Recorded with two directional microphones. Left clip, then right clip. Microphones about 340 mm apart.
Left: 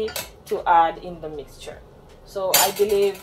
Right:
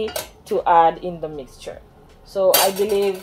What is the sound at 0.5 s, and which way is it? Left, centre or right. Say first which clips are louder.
Speech: right 3 dB; right.